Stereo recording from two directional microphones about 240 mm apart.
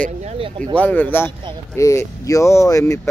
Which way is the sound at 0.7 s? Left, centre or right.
Centre.